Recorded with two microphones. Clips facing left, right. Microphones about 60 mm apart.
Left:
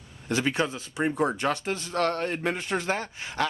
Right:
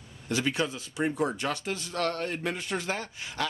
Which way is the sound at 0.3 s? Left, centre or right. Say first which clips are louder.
Left 3 dB; left.